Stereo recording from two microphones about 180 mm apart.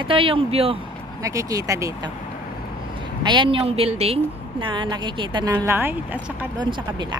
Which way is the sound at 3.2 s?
25° right (ahead or behind).